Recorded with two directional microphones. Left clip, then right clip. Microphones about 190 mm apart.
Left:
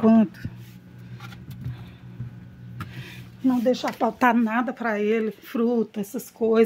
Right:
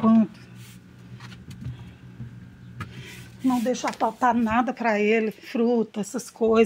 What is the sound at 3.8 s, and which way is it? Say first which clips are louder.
Speech: left 1 dB; 35° left (ahead or behind).